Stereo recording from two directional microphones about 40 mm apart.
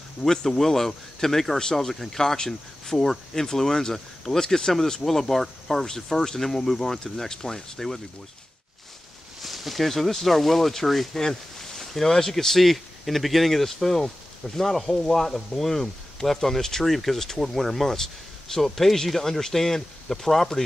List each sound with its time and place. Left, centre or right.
0.2 s speech: centre
5.0 s speech: centre
9.4 s speech: centre